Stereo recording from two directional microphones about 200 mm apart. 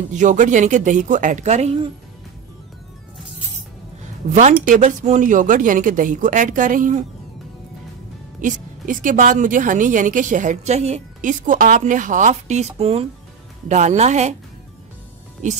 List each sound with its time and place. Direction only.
0.1 s a woman's voice: 40° right (ahead or behind)
4.3 s a woman's voice: 35° right (ahead or behind)
8.4 s a woman's voice: 40° right (ahead or behind)